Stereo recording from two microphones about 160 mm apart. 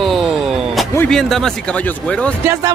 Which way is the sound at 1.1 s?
Centre (ahead or behind).